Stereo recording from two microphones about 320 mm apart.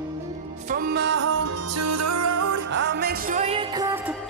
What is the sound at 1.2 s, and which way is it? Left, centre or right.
Music, right.